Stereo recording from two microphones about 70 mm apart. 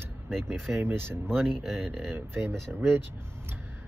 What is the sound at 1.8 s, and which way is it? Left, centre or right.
Speech, right.